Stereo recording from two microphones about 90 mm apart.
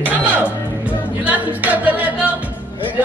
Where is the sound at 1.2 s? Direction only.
20° right (ahead or behind).